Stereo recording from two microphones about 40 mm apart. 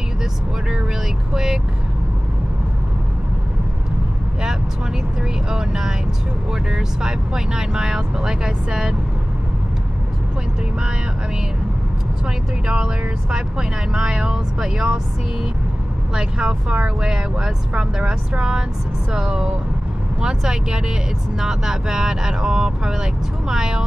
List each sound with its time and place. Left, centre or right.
1.3 s vehicle: centre
5.5 s speech: centre
12.6 s speech: right
16.2 s speech: right